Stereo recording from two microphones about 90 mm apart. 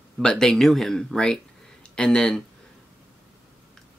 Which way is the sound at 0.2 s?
5° left (ahead or behind).